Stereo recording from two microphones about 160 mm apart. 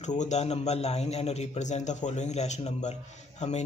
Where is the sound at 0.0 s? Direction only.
45° left (ahead or behind).